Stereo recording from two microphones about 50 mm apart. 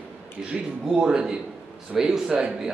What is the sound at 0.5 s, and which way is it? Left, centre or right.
Speech, centre.